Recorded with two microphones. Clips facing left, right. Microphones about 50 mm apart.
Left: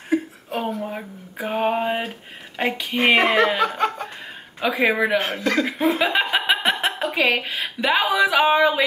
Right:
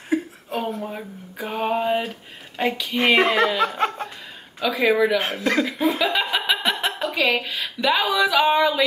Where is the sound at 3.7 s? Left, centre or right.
Centre.